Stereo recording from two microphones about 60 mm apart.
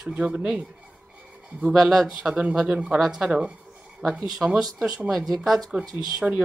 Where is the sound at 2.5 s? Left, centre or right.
Centre.